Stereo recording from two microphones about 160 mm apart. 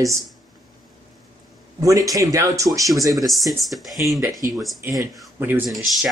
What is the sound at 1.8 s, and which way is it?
Speech, 20° right (ahead or behind).